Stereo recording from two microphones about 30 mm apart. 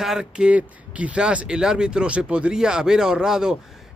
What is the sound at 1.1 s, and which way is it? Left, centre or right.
Speech, right.